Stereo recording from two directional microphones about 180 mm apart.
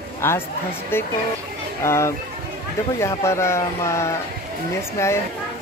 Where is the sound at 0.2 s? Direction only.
10° left (ahead or behind).